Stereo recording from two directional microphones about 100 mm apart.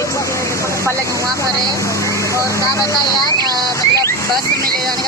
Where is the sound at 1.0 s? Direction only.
30° right (ahead or behind).